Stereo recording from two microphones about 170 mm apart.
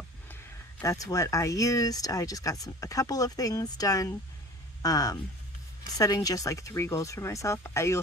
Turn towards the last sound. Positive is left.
turn(degrees=15)  # may be behind; listen again after turning